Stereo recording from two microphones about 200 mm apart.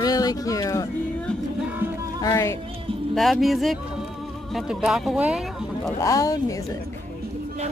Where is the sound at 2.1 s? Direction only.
15° left (ahead or behind).